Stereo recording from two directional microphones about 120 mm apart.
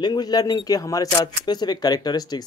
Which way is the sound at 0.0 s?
35° left (ahead or behind).